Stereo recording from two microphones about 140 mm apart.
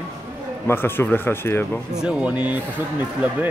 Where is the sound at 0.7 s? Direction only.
15° left (ahead or behind).